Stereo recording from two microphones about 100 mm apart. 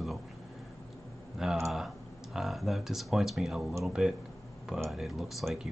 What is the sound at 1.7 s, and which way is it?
Speech, centre (ahead or behind).